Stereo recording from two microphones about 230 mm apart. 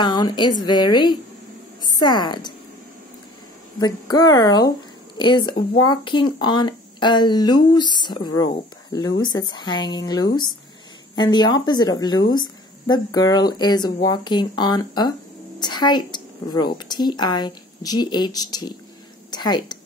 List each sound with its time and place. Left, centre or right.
0.0 s speech: centre
3.8 s a woman's voice: centre